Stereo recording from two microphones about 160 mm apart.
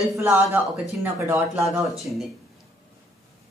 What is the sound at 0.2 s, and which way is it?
Speech, 15° right (ahead or behind).